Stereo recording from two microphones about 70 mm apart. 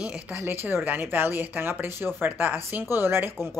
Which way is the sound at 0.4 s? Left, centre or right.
Right.